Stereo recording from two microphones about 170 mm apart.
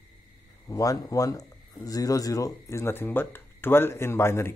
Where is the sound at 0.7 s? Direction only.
20° left (ahead or behind).